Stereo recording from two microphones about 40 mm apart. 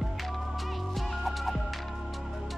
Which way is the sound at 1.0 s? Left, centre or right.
Centre.